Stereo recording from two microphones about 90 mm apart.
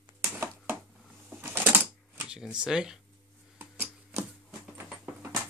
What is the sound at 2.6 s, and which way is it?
Speech, 10° right (ahead or behind).